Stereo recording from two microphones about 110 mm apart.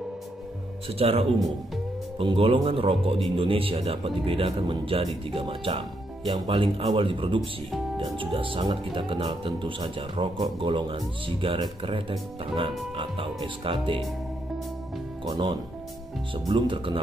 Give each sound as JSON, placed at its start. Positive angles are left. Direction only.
{"t": 0.8, "sound": "speech", "side_deg": -65}
{"t": 15.2, "sound": "speech", "side_deg": -40}